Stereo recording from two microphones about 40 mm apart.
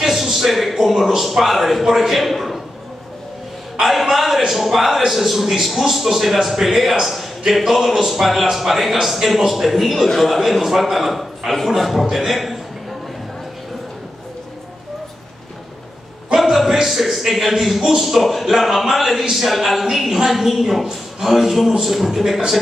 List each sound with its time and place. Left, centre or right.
0.0 s a man's voice: centre
3.8 s a woman's voice: centre
16.3 s a woman's voice: centre